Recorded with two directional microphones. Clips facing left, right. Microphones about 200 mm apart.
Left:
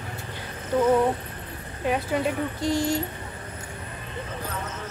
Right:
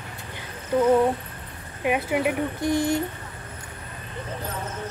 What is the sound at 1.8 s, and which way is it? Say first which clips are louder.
Speech: right 2 dB; 15° right (ahead or behind).